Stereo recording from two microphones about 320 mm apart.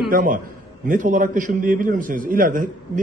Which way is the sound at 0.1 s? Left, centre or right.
Right.